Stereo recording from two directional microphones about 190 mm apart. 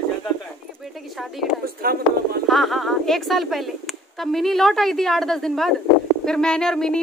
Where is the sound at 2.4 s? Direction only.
Centre (ahead or behind).